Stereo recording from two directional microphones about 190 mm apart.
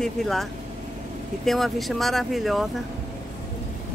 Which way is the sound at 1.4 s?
Centre (ahead or behind).